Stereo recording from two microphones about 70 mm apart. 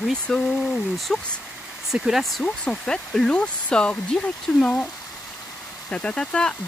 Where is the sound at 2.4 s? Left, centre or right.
Centre.